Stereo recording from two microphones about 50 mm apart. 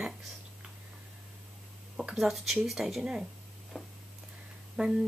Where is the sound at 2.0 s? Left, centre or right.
Centre.